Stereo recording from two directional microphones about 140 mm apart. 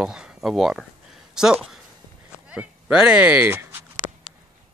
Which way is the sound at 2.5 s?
5° right (ahead or behind).